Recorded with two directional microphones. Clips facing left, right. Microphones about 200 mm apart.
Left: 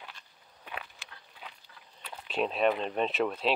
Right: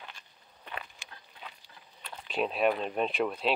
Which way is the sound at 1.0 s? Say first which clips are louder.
Right 1 dB; 15° right (ahead or behind).